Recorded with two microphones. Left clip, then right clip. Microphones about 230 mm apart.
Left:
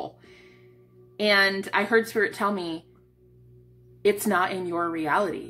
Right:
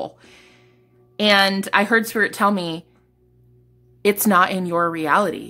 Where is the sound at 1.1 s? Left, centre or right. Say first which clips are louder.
Right 5 dB; right.